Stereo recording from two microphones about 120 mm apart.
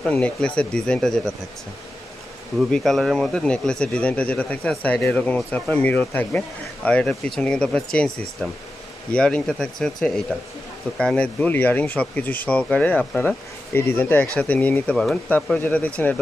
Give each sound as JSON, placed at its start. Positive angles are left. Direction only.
{"t": 0.0, "sound": "speech", "side_deg": 10}
{"t": 2.7, "sound": "speech", "side_deg": 5}